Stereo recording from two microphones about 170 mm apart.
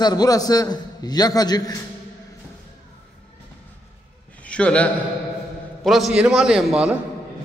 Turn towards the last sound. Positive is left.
turn(degrees=-5)  # may be behind; listen again after turning